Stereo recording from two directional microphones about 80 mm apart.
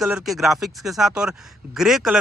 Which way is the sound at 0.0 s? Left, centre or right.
Centre.